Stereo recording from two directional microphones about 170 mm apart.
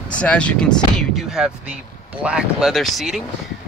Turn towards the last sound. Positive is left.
turn(degrees=0)  # may be behind; listen again after turning